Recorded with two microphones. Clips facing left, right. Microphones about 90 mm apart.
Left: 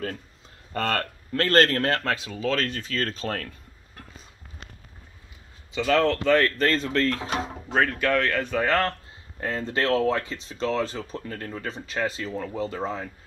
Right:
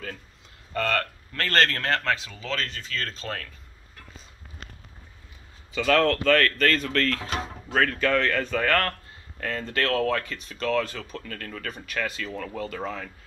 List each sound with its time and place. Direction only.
0.7 s speech: 35° left (ahead or behind)
5.8 s speech: 15° left (ahead or behind)